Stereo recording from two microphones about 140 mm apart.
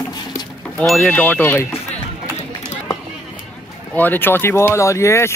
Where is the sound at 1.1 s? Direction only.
10° left (ahead or behind).